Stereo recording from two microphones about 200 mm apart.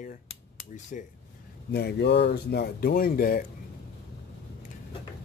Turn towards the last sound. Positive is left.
turn(degrees=45)  # may be behind; listen again after turning